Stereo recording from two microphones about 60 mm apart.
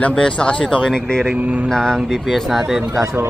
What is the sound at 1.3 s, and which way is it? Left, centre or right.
Speech, right.